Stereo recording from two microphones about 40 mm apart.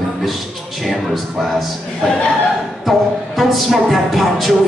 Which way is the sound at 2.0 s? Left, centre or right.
Left.